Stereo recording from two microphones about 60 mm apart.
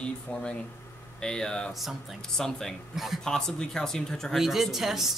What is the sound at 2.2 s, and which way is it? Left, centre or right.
Speech, centre.